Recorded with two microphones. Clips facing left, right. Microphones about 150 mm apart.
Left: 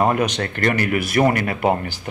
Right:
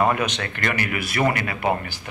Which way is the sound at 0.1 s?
40° left (ahead or behind).